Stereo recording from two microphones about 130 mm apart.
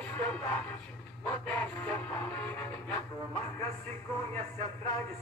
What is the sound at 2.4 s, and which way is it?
Music, 15° left (ahead or behind).